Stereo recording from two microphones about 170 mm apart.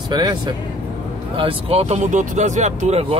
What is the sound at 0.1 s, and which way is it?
Speech, 25° right (ahead or behind).